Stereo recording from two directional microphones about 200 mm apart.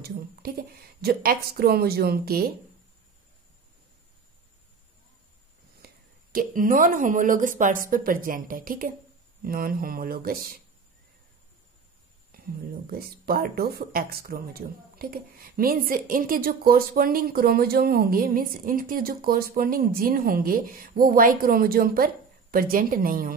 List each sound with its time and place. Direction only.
0.0 s speech: 50° right (ahead or behind)
6.3 s speech: 45° right (ahead or behind)
12.3 s speech: 50° right (ahead or behind)